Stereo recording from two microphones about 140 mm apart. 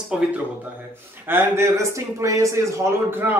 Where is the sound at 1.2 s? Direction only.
15° right (ahead or behind).